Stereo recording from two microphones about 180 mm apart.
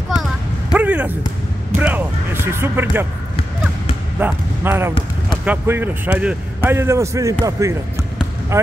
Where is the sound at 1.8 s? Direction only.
10° right (ahead or behind).